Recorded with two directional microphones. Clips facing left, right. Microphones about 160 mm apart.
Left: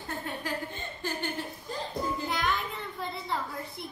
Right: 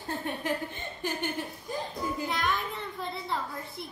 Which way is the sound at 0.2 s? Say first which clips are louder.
Right 3 dB; 20° right (ahead or behind).